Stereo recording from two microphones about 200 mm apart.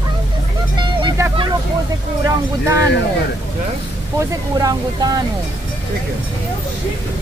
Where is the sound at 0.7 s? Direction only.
20° right (ahead or behind).